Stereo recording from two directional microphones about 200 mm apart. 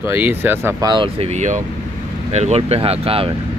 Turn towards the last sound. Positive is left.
turn(degrees=-30)  # may be behind; listen again after turning